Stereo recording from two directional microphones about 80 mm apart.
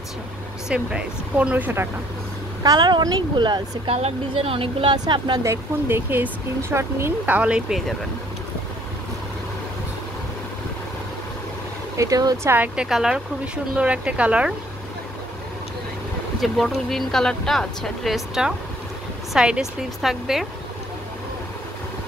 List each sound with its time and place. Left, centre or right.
0.7 s speech: centre
2.6 s speech: right
5.4 s speech: right
7.2 s speech: centre
12.0 s speech: right
12.4 s speech: right
12.7 s speech: centre
16.3 s speech: centre